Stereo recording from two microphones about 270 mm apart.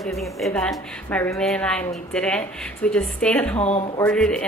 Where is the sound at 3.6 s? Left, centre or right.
Left.